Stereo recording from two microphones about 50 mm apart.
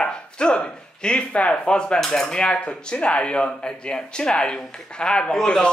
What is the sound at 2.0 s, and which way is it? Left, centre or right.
Cutlery, centre.